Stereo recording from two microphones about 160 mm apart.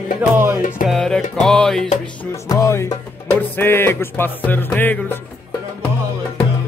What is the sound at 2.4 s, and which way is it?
Speech, 20° left (ahead or behind).